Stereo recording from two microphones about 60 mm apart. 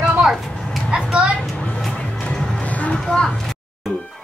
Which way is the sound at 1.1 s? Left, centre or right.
Centre.